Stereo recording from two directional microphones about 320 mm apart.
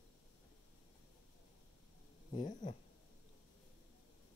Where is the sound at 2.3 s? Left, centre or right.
Left.